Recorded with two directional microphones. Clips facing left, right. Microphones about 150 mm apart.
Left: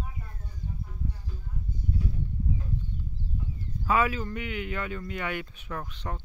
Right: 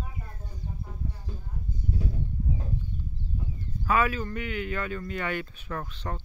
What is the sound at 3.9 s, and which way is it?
A man's voice, 20° left (ahead or behind).